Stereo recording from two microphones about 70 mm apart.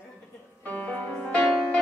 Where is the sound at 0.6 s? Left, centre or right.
Left.